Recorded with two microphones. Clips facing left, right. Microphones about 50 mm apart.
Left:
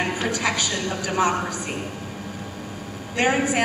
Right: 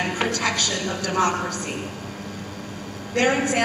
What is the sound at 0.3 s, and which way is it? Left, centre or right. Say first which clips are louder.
A woman's voice: even; centre.